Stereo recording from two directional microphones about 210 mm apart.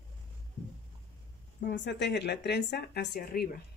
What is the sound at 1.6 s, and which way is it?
Speech, 55° left (ahead or behind).